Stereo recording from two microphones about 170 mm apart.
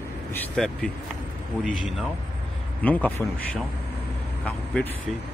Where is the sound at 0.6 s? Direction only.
5° left (ahead or behind).